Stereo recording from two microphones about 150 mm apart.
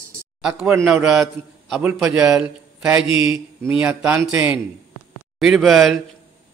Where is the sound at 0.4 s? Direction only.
5° right (ahead or behind).